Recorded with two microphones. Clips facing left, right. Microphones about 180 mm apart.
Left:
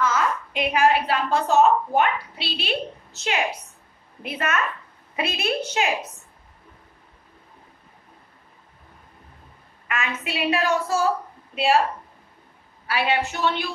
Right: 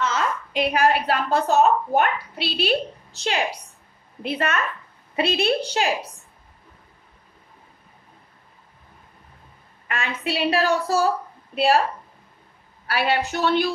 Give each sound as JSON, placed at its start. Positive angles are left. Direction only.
{"t": 0.0, "sound": "a woman's voice", "side_deg": -30}
{"t": 9.8, "sound": "a woman's voice", "side_deg": -30}
{"t": 12.8, "sound": "a woman's voice", "side_deg": -40}